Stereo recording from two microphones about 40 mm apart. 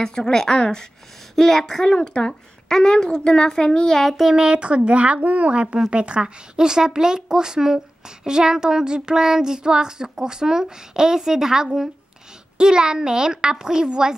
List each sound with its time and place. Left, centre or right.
0.0 s a woman's voice: centre
4.2 s speech: centre
4.5 s a child's voice: right